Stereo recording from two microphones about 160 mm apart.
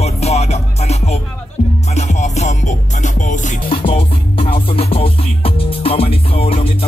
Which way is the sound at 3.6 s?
35° left (ahead or behind).